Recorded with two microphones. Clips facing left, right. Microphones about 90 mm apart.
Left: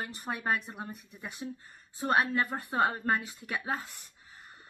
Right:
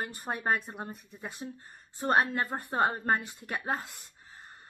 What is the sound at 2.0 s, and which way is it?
Speech, 35° right (ahead or behind).